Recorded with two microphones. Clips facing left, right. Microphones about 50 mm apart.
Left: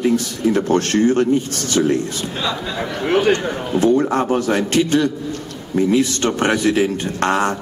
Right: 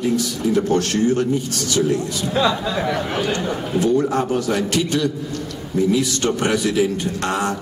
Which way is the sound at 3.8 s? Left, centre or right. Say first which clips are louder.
Left 3 dB; left.